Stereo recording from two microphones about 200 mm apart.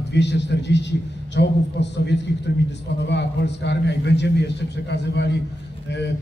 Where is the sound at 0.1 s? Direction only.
60° left (ahead or behind).